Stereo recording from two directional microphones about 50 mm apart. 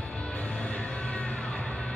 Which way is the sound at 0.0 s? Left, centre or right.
Left.